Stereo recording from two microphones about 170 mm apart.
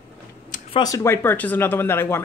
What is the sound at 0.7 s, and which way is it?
Speech, 20° left (ahead or behind).